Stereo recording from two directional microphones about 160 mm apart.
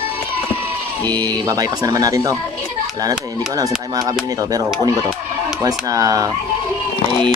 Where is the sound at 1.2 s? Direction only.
25° right (ahead or behind).